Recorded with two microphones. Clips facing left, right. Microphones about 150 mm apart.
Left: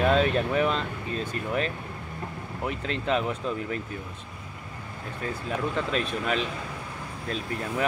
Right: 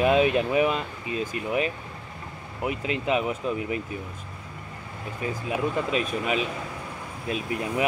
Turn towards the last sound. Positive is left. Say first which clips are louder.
# right 3 dB
turn(degrees=-10)  # may be behind; listen again after turning